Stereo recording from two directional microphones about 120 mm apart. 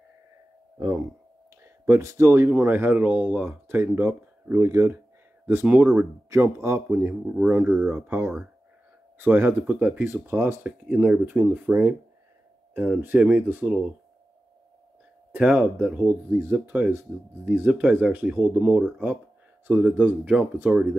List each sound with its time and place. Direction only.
0.7 s speech: 30° right (ahead or behind); by 13.7 s 15° right (ahead or behind)
15.3 s speech: 5° right (ahead or behind)